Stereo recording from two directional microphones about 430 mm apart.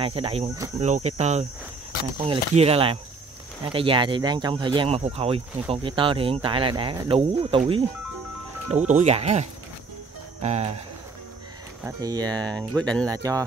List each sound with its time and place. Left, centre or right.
0.0 s speech: centre
8.8 s speech: centre
11.8 s speech: centre
12.7 s speech: centre
13.0 s speech: centre